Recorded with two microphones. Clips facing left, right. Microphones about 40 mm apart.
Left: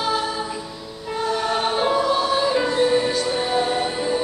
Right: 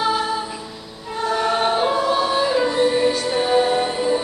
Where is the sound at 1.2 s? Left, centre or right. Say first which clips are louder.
Right 3 dB; centre.